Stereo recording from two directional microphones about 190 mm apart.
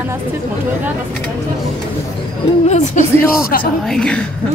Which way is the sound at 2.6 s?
35° left (ahead or behind).